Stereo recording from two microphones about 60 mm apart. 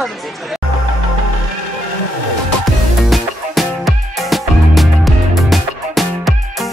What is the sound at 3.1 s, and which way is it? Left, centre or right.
Music, centre.